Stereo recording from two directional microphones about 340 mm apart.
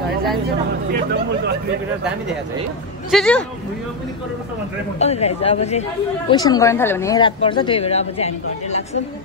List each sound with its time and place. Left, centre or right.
0.9 s speech: right
3.1 s a man's voice: centre
4.9 s a woman's voice: centre